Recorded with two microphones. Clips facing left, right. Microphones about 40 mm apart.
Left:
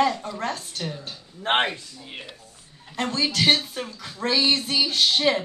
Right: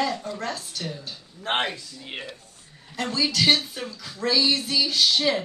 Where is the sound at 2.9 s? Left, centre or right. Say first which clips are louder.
Even; left.